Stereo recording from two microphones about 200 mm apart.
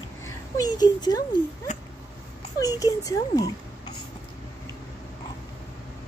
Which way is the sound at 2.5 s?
15° left (ahead or behind).